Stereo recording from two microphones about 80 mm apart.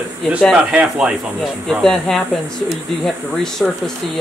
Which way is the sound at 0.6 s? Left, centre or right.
Centre.